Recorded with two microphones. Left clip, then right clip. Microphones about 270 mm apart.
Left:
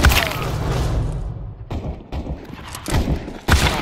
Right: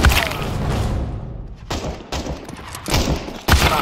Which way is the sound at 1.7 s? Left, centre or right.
Right.